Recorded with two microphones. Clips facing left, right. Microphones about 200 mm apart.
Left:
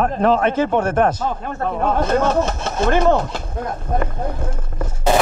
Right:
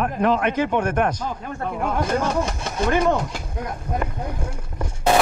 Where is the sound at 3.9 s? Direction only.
50° left (ahead or behind).